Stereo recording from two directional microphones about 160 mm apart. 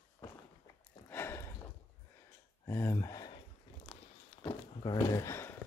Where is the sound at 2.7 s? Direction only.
15° left (ahead or behind).